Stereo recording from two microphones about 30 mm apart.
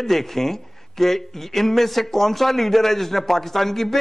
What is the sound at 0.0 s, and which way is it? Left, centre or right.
A man's voice, centre.